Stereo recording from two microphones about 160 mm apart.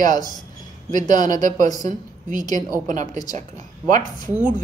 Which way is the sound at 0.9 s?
50° right (ahead or behind).